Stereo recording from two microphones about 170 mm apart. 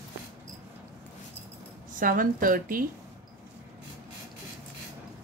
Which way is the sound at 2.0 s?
55° right (ahead or behind).